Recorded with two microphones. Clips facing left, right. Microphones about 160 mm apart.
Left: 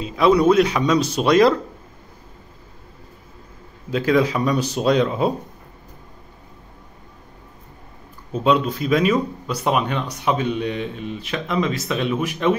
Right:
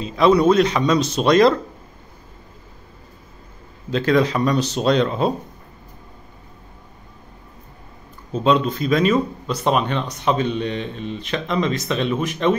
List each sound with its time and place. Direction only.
0.0 s speech: 5° left (ahead or behind)
3.9 s speech: 10° left (ahead or behind)
8.3 s speech: 10° left (ahead or behind)